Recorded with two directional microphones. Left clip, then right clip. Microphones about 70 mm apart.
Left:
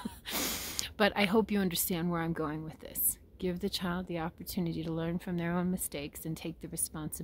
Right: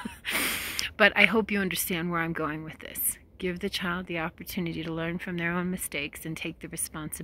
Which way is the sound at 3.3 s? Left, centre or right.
Left.